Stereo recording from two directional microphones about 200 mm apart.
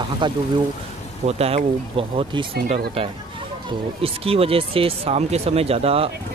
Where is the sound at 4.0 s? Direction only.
30° right (ahead or behind).